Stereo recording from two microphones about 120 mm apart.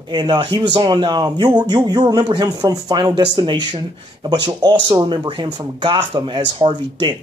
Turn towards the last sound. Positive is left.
turn(degrees=-45)  # may be behind; listen again after turning